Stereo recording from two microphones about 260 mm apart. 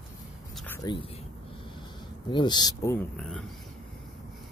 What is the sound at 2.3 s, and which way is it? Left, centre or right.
Speech, centre.